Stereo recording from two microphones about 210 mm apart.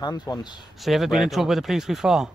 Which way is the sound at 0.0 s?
20° left (ahead or behind).